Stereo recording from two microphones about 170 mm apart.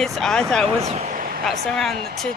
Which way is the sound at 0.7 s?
40° right (ahead or behind).